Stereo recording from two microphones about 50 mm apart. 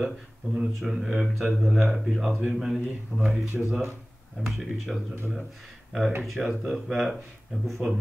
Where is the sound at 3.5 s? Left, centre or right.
Centre.